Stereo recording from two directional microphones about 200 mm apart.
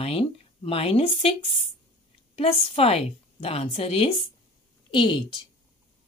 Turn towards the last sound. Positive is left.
turn(degrees=25)  # may be behind; listen again after turning